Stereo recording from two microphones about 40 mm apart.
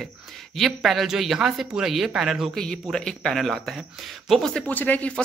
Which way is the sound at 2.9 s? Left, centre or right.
Centre.